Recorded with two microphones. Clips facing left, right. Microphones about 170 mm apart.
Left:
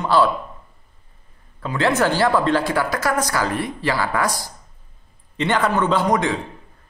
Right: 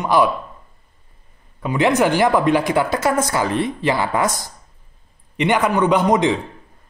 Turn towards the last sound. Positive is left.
turn(degrees=-20)  # may be behind; listen again after turning